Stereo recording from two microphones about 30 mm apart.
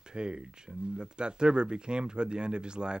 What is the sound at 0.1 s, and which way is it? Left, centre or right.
Speech, right.